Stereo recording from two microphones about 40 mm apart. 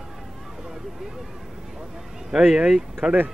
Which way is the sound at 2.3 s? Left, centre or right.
Centre.